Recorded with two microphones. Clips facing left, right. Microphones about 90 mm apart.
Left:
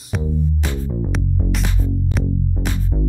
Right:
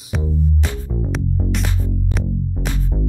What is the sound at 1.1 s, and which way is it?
Music, centre (ahead or behind).